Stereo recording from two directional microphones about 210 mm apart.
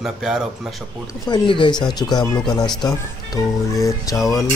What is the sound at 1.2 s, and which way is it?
Speech, 20° left (ahead or behind).